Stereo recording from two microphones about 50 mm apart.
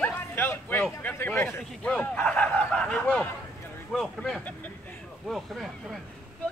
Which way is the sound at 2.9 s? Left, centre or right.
Centre.